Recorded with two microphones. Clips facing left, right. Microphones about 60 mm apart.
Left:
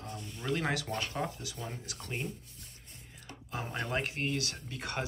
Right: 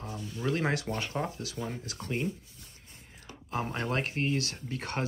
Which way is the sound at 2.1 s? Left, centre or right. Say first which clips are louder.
Right 6 dB; right.